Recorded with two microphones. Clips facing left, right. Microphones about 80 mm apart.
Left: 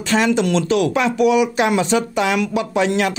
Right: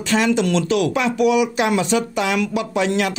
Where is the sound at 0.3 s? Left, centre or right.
Left.